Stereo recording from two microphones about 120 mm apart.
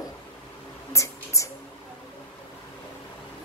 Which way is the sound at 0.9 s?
25° left (ahead or behind).